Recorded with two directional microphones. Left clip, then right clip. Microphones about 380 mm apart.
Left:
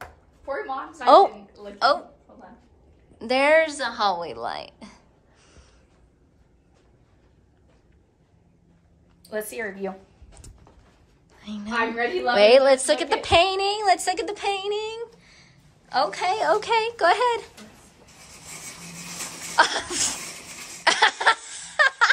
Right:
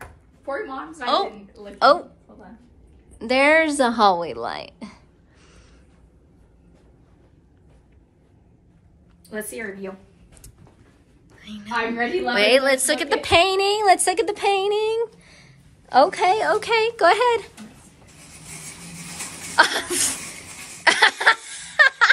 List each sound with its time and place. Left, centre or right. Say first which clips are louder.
1.0 s a woman's voice: left 8 dB; centre
1.5 s a woman's voice: right 5 dB; centre
3.2 s a woman's voice: right 2 dB; centre
9.2 s a woman's voice: left 1 dB; centre
11.3 s a woman's voice: even; centre
19.5 s a woman's voice: right 3 dB; centre
20.8 s a sound: right 3 dB; centre